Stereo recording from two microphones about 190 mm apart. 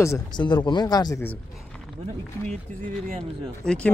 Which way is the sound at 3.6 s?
5° left (ahead or behind).